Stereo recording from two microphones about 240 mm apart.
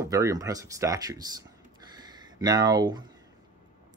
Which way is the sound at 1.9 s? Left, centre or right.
Centre.